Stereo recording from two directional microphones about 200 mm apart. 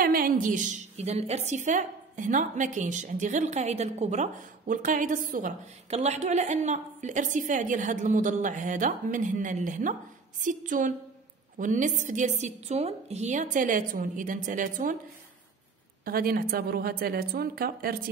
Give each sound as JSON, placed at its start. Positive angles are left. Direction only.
{"t": 0.0, "sound": "a woman's voice", "side_deg": -45}
{"t": 16.1, "sound": "a woman's voice", "side_deg": -45}